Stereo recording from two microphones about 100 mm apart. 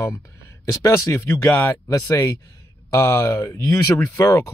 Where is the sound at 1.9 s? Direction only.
30° left (ahead or behind).